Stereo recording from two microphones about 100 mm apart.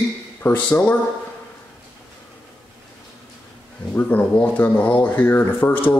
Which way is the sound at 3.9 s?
20° left (ahead or behind).